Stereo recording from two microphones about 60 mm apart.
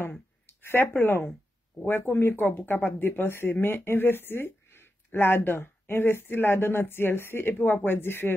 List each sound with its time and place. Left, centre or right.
0.5 s speech: left